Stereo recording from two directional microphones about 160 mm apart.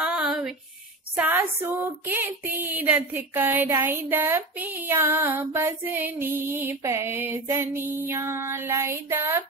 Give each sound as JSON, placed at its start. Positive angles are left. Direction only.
{"t": 0.0, "sound": "female singing", "side_deg": -5}